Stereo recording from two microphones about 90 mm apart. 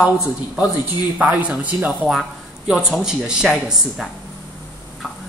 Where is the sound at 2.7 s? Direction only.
5° right (ahead or behind).